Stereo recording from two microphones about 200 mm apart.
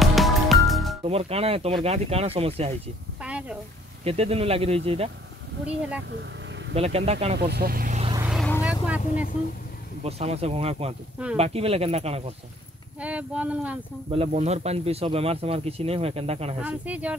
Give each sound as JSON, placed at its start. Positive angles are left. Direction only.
{"t": 0.0, "sound": "music", "side_deg": 0}
{"t": 1.0, "sound": "speech", "side_deg": -30}
{"t": 3.2, "sound": "a sound", "side_deg": -5}
{"t": 4.0, "sound": "speech", "side_deg": -30}
{"t": 6.7, "sound": "speech", "side_deg": -30}
{"t": 7.3, "sound": "speech", "side_deg": -55}
{"t": 8.2, "sound": "vehicle", "side_deg": -5}
{"t": 9.0, "sound": "speech", "side_deg": 35}
{"t": 10.0, "sound": "speech", "side_deg": -30}
{"t": 13.0, "sound": "speech", "side_deg": -5}
{"t": 14.1, "sound": "speech", "side_deg": -30}
{"t": 16.5, "sound": "speech", "side_deg": -5}